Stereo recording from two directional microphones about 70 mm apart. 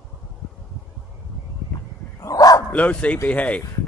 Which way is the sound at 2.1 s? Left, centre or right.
Left.